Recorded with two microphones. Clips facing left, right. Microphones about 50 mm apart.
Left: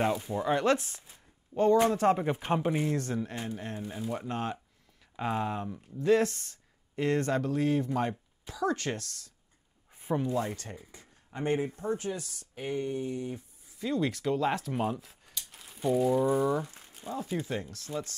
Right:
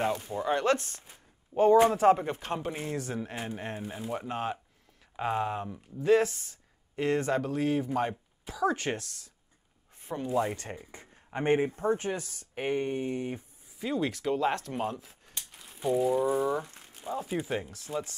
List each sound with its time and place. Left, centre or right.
0.0 s speech: centre
1.0 s speech: centre
2.1 s speech: centre
2.8 s speech: centre
3.4 s speech: right
3.9 s speech: centre
9.9 s a sound: centre
10.2 s speech: centre
10.5 s speech: right
11.8 s speech: right
13.7 s speech: centre
16.9 s a sound: centre
17.3 s speech: centre